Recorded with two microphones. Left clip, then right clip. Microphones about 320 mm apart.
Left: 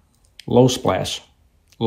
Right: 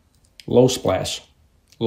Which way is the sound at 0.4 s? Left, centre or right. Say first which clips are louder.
Even; left.